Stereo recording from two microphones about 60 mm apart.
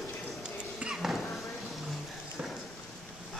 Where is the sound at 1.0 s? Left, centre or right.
Centre.